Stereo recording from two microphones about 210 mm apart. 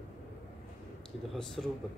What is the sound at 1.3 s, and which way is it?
Speech, 5° left (ahead or behind).